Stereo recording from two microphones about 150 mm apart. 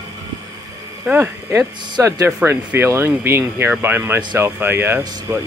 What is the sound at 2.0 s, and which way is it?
Speech, 20° right (ahead or behind).